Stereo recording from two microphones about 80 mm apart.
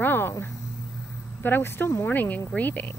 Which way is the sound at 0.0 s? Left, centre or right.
Left.